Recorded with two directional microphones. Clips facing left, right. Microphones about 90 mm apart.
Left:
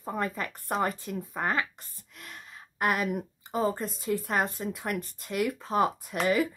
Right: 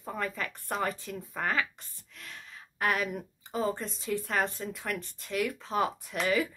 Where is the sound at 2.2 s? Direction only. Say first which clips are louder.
Left 1 dB; 10° left (ahead or behind).